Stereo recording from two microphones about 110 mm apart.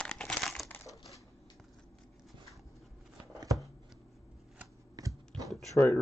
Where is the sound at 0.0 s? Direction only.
10° left (ahead or behind).